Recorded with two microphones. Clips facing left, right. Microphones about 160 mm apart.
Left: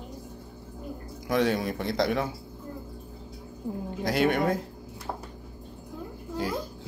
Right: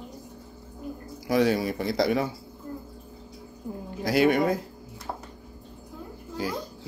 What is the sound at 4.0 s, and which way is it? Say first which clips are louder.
Speech: right 3 dB; 5° right (ahead or behind).